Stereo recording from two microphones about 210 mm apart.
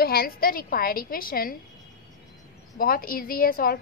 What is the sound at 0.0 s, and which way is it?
A woman's voice, 45° left (ahead or behind).